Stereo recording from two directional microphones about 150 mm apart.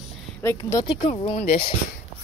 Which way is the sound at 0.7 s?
30° left (ahead or behind).